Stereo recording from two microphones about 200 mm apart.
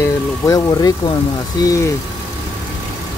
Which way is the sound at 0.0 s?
20° left (ahead or behind).